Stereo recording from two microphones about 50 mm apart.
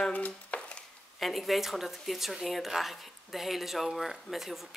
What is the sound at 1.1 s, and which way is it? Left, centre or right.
Speech, centre.